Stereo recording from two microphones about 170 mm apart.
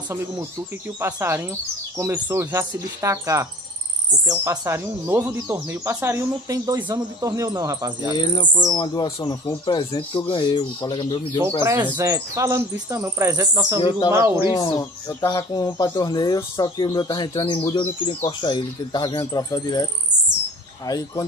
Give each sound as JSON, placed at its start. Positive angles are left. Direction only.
{"t": 1.0, "sound": "speech", "side_deg": -15}
{"t": 8.2, "sound": "speech", "side_deg": 25}
{"t": 11.6, "sound": "speech", "side_deg": -15}
{"t": 13.7, "sound": "speech", "side_deg": 30}
{"t": 14.1, "sound": "speech", "side_deg": -15}
{"t": 14.5, "sound": "speech", "side_deg": 20}